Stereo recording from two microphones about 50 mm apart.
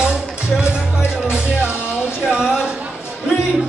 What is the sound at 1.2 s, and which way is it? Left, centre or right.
Music, right.